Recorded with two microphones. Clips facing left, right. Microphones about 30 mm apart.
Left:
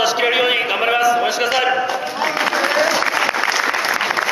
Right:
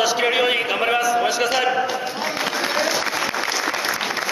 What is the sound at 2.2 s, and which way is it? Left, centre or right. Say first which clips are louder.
Applause: left 7 dB; left.